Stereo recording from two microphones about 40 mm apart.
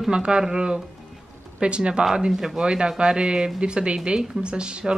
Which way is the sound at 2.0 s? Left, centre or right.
Centre.